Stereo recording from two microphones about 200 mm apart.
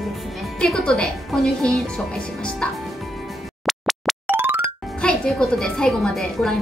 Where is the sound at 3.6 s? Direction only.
Centre (ahead or behind).